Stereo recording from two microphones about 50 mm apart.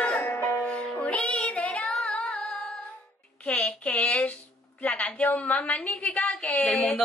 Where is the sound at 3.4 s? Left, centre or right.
Left.